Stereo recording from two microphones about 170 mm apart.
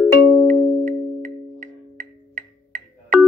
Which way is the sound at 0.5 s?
50° right (ahead or behind).